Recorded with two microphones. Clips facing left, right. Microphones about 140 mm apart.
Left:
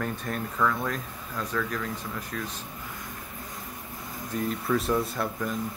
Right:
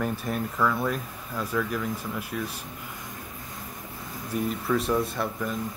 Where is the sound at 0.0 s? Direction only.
5° right (ahead or behind).